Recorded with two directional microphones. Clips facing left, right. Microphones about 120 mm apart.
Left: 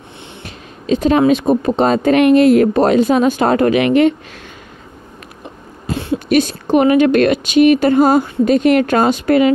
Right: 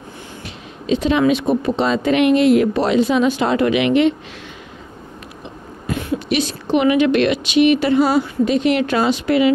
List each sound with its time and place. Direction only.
0.8 s a woman's voice: 45° left (ahead or behind)
5.9 s a sound: 30° left (ahead or behind)
6.2 s a woman's voice: 50° left (ahead or behind)